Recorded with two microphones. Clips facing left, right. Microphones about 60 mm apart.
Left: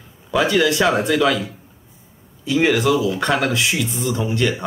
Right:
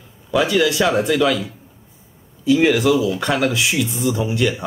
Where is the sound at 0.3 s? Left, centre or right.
Centre.